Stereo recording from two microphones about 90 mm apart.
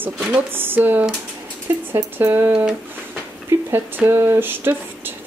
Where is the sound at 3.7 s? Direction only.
25° right (ahead or behind).